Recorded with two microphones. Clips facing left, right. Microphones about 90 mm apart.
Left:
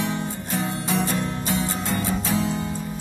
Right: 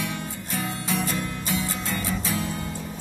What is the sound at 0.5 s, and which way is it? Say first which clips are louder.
Music: left 3 dB; 25° left (ahead or behind).